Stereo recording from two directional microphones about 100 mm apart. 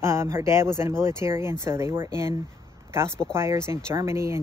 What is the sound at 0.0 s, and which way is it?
Speech, 25° right (ahead or behind).